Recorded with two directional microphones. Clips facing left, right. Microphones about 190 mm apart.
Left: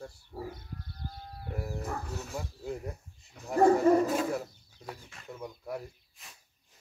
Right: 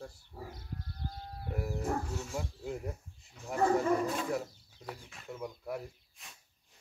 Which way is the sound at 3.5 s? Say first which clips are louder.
Left 7 dB; 40° left (ahead or behind).